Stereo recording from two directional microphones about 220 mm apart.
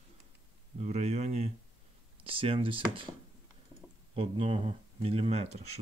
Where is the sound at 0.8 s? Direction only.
30° right (ahead or behind).